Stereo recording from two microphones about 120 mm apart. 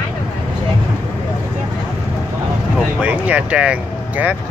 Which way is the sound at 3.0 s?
15° right (ahead or behind).